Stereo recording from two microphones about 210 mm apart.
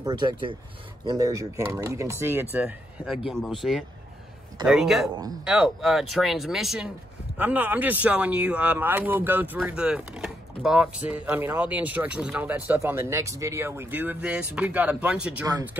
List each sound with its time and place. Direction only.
0.0 s speech: 20° right (ahead or behind)